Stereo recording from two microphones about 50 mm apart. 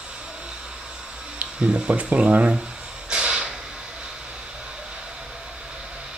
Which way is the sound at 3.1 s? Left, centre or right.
Centre.